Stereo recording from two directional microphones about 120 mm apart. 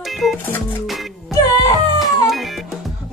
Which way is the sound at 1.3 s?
35° left (ahead or behind).